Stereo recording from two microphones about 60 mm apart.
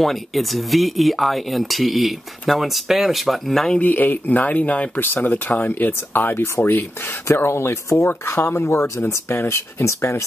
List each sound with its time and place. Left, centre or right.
0.0 s speech: centre
3.8 s speech: left